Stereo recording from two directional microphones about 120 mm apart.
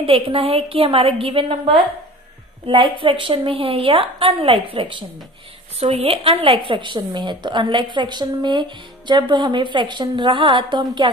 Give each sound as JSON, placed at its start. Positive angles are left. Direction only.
{"t": 0.0, "sound": "a woman's voice", "side_deg": -50}
{"t": 2.6, "sound": "a woman's voice", "side_deg": -45}
{"t": 5.8, "sound": "speech", "side_deg": -55}